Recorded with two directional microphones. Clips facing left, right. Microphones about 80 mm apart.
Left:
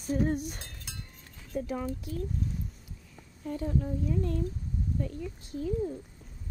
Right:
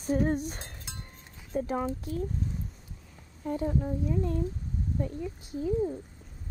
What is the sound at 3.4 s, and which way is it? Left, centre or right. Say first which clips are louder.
Speech: right 2 dB; right.